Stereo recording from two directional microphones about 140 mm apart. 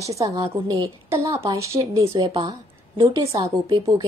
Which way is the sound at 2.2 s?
35° right (ahead or behind).